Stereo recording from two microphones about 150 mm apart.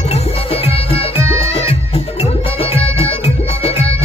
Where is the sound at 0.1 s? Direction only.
40° left (ahead or behind).